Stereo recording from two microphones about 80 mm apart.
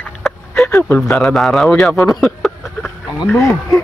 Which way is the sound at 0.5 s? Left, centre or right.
Left.